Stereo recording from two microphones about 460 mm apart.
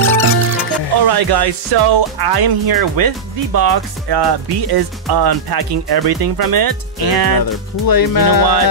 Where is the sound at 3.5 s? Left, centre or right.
Right.